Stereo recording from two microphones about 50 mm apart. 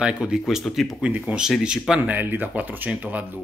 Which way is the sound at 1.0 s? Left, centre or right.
Centre.